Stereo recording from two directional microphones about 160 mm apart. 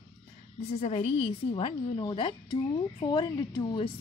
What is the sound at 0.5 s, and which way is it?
A woman's voice, 45° left (ahead or behind).